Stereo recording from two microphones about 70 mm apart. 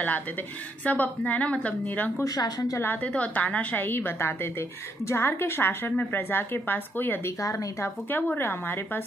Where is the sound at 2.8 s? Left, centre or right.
Left.